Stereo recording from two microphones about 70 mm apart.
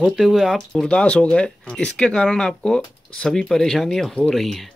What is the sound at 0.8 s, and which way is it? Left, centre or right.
A man's voice, centre.